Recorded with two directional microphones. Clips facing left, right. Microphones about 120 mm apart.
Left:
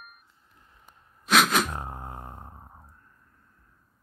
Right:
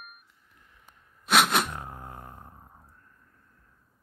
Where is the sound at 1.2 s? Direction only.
5° right (ahead or behind).